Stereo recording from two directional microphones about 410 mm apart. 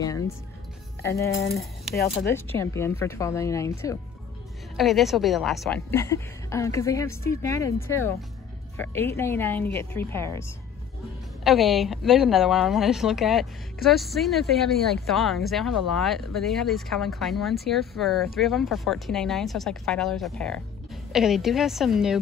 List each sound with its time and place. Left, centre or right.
1.0 s speech: left
2.3 s speech: centre
4.7 s a woman's voice: centre
11.4 s a woman's voice: centre